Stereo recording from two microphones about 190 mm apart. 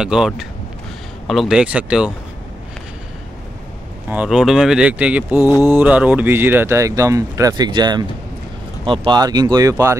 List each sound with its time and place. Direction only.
0.0 s speech: 5° right (ahead or behind)
4.1 s speech: 5° right (ahead or behind)